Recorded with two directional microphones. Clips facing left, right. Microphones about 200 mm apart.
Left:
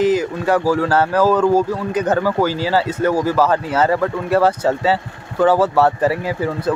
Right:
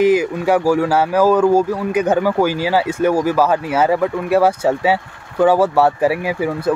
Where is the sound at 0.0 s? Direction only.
10° right (ahead or behind).